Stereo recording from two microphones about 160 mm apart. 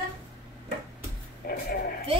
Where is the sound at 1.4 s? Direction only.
70° left (ahead or behind).